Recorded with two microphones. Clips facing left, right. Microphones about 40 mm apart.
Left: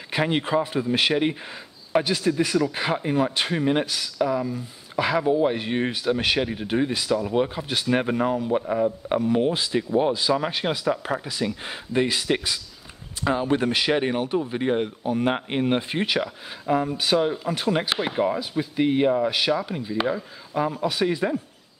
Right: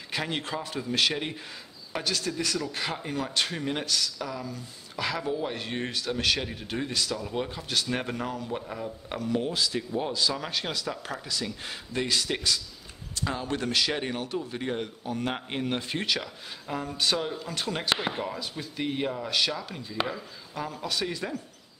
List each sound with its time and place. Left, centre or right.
0.1 s a man's voice: left